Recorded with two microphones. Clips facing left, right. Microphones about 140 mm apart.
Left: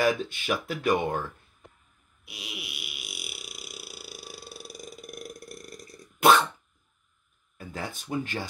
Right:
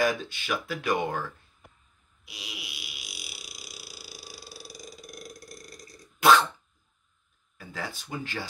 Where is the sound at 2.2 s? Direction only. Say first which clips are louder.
Left 2 dB; 55° left (ahead or behind).